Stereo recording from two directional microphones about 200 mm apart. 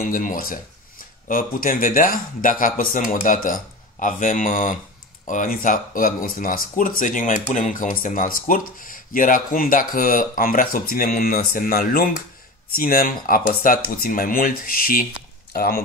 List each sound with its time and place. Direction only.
0.0 s speech: 45° left (ahead or behind)